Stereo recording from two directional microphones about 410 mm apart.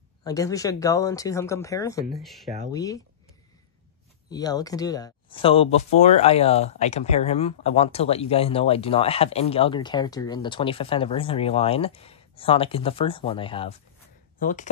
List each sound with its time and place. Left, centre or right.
0.2 s speech: centre
4.3 s speech: centre